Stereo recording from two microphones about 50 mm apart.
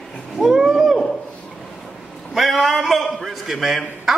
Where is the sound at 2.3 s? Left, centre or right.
Centre.